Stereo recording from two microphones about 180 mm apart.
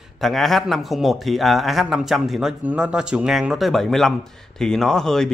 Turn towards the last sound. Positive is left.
turn(degrees=5)  # may be behind; listen again after turning